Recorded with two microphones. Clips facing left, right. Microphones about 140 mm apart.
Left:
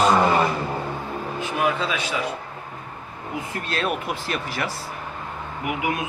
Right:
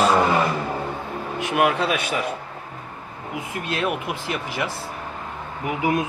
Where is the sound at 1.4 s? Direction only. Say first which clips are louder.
Right 4 dB; 70° right (ahead or behind).